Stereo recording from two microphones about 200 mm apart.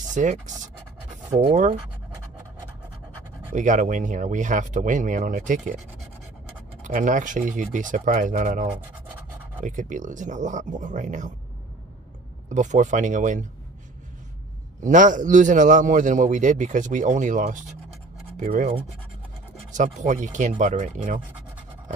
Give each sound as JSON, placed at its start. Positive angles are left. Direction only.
{"t": 0.1, "sound": "a man's voice", "side_deg": -40}
{"t": 3.5, "sound": "a man's voice", "side_deg": -40}
{"t": 6.8, "sound": "a man's voice", "side_deg": -40}
{"t": 12.4, "sound": "a man's voice", "side_deg": -40}
{"t": 14.8, "sound": "a man's voice", "side_deg": -40}